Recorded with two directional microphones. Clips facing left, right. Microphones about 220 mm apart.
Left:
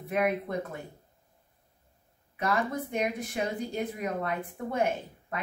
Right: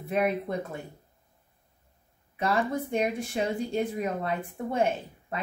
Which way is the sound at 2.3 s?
30° right (ahead or behind).